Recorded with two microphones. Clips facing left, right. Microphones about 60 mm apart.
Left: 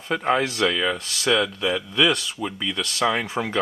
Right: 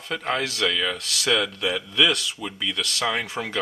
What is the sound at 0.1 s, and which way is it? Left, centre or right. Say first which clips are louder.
Speech: left 5 dB; centre.